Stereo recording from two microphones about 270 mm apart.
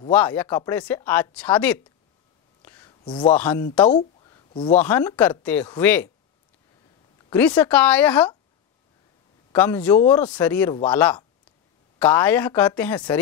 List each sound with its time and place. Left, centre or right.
0.1 s speech: centre
2.6 s whispering: centre
3.3 s speech: centre
3.9 s a sound: centre
4.7 s speech: centre
7.2 s speech: centre
9.5 s speech: centre